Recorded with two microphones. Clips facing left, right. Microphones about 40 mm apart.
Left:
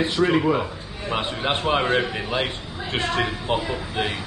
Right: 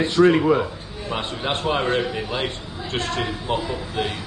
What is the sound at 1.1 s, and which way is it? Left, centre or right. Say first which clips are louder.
A man's voice: left 1 dB; centre.